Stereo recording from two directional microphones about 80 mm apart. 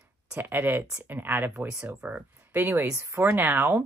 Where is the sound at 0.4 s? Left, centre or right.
Right.